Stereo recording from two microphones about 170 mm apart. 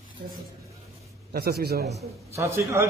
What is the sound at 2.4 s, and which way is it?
Speech, 15° right (ahead or behind).